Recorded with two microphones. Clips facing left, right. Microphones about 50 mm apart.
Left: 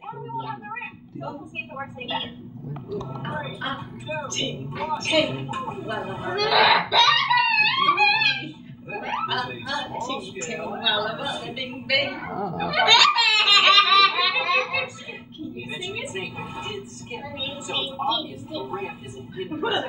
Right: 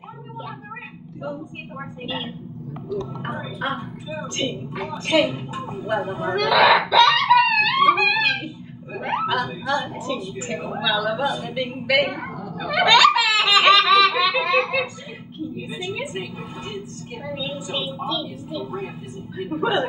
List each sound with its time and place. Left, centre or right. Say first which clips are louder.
3.5 s a woman's voice: right 4 dB; centre
5.3 s a woman's voice: left 1 dB; centre
6.3 s fowl: right 3 dB; centre
7.8 s music: right 3 dB; centre
8.9 s hiccup: right 4 dB; centre
9.7 s a woman's voice: right 4 dB; centre
12.3 s dog: left 4 dB; left
12.7 s laughter: right 3 dB; centre
16.0 s a woman's voice: right 2 dB; centre
17.3 s a woman's voice: right 4 dB; centre